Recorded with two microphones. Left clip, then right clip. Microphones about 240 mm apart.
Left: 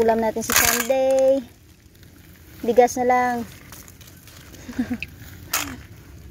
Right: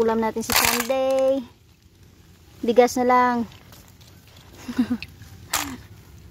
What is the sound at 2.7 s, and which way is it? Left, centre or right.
Speech, centre.